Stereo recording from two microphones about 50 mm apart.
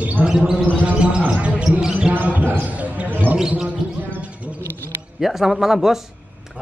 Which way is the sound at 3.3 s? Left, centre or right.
Centre.